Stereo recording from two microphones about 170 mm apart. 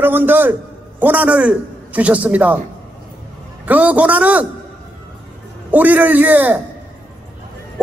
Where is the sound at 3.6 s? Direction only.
10° right (ahead or behind).